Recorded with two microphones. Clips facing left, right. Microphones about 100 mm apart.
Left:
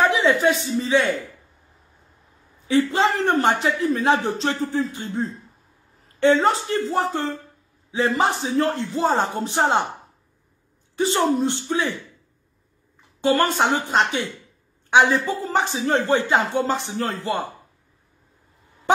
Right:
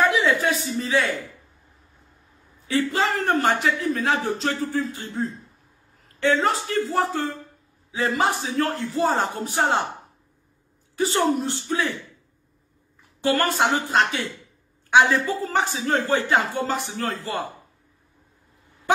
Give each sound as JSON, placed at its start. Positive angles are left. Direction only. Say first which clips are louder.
{"t": 0.0, "sound": "speech", "louder": "left 2 dB", "side_deg": 20}
{"t": 2.7, "sound": "a man's voice", "louder": "left 3 dB", "side_deg": 25}
{"t": 11.1, "sound": "a man's voice", "louder": "left 2 dB", "side_deg": 20}
{"t": 13.2, "sound": "a man's voice", "louder": "left 2 dB", "side_deg": 20}